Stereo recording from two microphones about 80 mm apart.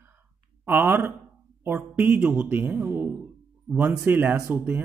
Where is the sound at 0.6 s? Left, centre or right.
Right.